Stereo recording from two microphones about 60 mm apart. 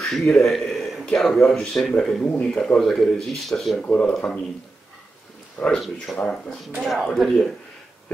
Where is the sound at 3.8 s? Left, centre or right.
Left.